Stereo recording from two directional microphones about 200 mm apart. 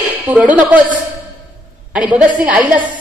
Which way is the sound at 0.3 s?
5° right (ahead or behind).